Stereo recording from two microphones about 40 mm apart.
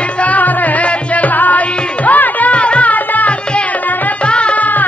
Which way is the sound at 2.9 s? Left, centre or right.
Left.